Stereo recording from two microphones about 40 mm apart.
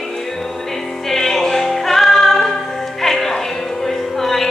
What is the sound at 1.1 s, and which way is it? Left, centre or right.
Music, centre.